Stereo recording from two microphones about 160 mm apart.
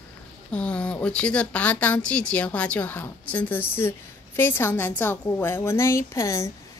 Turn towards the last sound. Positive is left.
turn(degrees=20)  # may be behind; listen again after turning